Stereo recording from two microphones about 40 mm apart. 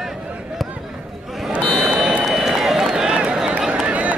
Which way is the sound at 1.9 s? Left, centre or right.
Centre.